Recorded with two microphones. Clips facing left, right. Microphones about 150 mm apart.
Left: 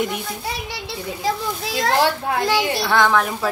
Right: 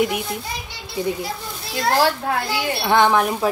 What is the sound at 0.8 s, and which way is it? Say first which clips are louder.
A child's voice: right 1 dB; 90° left.